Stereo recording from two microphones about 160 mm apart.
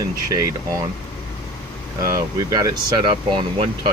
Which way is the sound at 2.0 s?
20° right (ahead or behind).